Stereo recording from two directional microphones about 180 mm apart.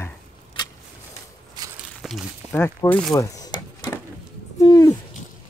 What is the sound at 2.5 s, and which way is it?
Speech, 15° left (ahead or behind).